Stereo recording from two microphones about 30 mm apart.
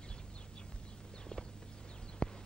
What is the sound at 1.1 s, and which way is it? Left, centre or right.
Walk, centre.